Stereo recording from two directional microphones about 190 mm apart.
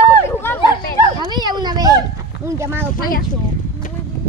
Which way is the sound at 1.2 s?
20° right (ahead or behind).